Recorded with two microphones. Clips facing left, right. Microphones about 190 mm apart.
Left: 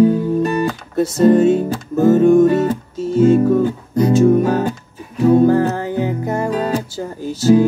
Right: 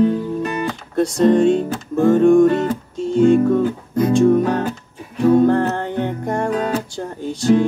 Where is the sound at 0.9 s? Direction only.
5° left (ahead or behind).